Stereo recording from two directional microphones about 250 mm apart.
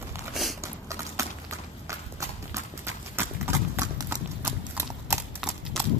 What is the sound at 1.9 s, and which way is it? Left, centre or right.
Clip-clop, centre.